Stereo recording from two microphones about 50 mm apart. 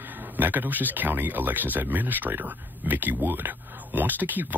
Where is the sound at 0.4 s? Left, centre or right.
Right.